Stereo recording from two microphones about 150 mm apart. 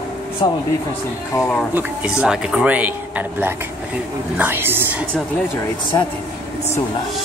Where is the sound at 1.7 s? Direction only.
5° right (ahead or behind).